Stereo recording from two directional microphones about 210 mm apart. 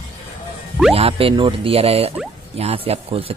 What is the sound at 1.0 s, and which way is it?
Speech, 25° right (ahead or behind).